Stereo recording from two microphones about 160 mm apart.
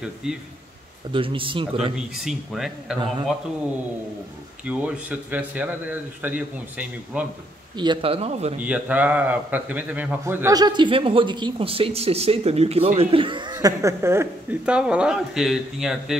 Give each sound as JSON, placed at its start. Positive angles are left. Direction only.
{"t": 0.2, "sound": "speech", "side_deg": -5}
{"t": 1.1, "sound": "speech", "side_deg": -35}
{"t": 2.0, "sound": "speech", "side_deg": 0}
{"t": 4.6, "sound": "a man's voice", "side_deg": -10}
{"t": 7.7, "sound": "speech", "side_deg": -30}
{"t": 8.5, "sound": "a man's voice", "side_deg": -10}